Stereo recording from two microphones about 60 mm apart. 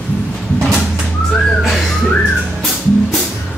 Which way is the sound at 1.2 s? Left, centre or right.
Centre.